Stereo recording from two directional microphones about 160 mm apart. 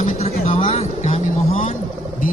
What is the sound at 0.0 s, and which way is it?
Vehicle, 45° left (ahead or behind).